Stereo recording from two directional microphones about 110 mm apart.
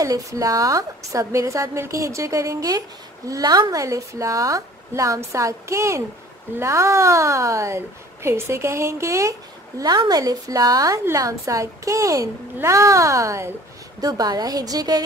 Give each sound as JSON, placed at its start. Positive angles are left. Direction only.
{"t": 0.0, "sound": "a woman's voice", "side_deg": -30}
{"t": 9.8, "sound": "a woman's voice", "side_deg": -40}